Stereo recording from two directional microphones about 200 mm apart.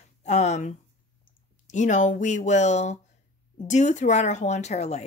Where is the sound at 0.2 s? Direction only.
35° left (ahead or behind).